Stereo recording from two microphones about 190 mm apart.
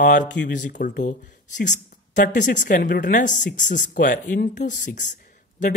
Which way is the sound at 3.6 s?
65° left (ahead or behind).